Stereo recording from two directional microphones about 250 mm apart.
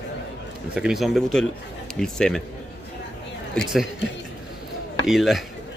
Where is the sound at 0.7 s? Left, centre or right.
Centre.